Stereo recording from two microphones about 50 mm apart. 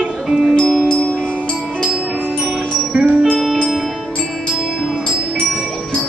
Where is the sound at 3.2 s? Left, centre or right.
Centre.